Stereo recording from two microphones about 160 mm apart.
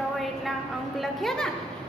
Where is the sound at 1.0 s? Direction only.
Centre (ahead or behind).